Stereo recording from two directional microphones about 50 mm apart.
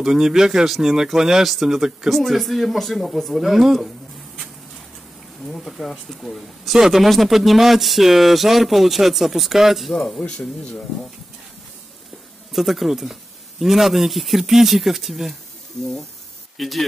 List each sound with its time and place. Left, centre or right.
0.0 s speech: centre
5.7 s speech: centre
10.0 s speech: centre
12.5 s speech: centre
15.8 s speech: centre
16.5 s speech: centre